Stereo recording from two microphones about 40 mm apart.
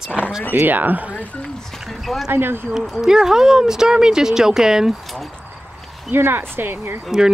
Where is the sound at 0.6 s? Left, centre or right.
Right.